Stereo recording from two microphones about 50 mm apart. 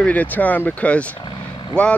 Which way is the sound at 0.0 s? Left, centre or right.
Left.